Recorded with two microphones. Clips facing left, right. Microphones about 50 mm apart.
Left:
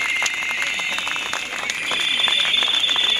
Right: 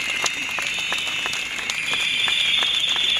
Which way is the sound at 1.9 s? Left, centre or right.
Left.